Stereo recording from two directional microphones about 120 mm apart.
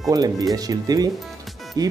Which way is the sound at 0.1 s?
30° right (ahead or behind).